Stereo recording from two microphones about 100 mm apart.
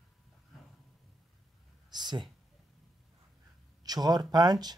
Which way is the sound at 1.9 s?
45° right (ahead or behind).